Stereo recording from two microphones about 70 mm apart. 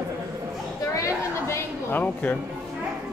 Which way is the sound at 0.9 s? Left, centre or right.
Left.